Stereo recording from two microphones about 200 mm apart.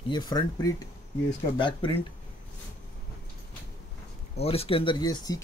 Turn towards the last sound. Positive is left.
turn(degrees=20)  # may be behind; listen again after turning